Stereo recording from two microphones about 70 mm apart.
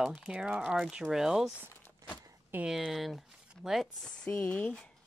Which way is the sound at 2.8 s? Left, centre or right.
Centre.